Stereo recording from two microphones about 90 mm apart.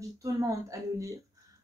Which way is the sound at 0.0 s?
40° right (ahead or behind).